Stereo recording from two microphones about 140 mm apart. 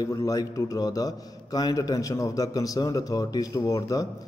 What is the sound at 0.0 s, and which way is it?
A man's voice, 25° left (ahead or behind).